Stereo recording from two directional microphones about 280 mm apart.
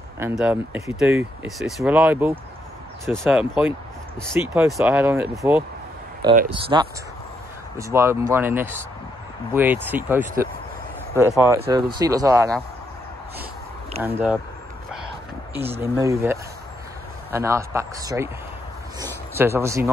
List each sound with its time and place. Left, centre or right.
0.2 s speech: centre
14.0 s speech: centre
15.5 s speech: centre
18.9 s a sound: centre